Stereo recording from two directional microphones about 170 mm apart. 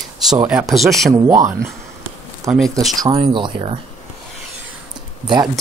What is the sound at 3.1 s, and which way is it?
Speech, 30° right (ahead or behind).